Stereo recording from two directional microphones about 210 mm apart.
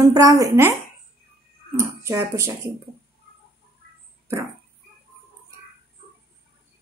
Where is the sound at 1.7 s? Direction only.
15° right (ahead or behind).